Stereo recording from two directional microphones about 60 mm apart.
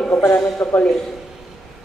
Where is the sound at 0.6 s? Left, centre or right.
Left.